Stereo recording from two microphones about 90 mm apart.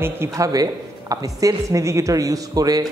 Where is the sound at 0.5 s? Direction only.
45° right (ahead or behind).